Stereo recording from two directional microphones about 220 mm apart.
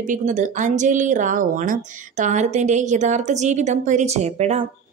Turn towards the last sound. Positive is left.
turn(degrees=-30)  # may be behind; listen again after turning